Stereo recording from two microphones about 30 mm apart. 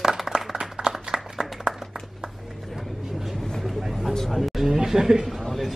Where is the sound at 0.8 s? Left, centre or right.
Right.